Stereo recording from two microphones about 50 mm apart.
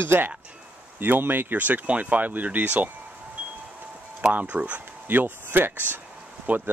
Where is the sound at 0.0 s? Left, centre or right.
Right.